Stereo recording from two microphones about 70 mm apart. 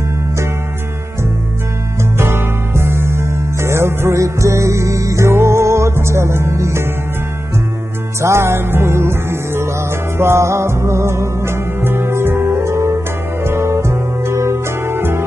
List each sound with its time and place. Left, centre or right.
2.1 s music: right
8.2 s music: right